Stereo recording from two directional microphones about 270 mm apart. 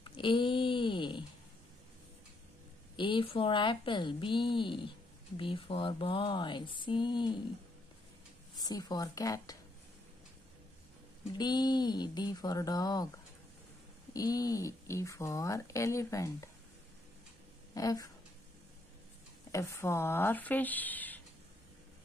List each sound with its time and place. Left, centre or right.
0.0 s a sound: centre
3.0 s speech: centre
8.5 s speech: centre
11.3 s speech: centre
14.1 s speech: centre
17.7 s speech: centre
19.5 s speech: centre